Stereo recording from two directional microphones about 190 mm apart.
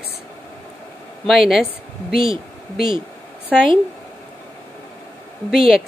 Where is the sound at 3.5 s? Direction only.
5° right (ahead or behind).